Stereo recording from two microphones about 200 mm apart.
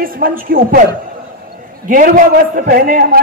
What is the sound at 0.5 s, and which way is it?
Speech, 45° right (ahead or behind).